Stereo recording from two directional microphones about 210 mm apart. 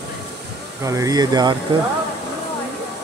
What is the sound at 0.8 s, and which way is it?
Speech, 15° right (ahead or behind).